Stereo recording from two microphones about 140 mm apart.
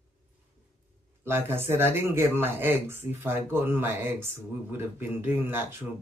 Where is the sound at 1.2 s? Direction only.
15° right (ahead or behind).